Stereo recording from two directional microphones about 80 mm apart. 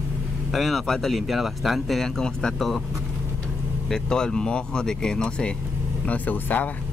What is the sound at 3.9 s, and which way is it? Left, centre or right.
Speech, centre.